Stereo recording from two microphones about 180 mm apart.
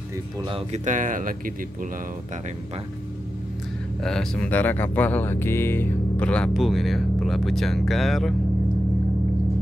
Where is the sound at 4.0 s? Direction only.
5° left (ahead or behind).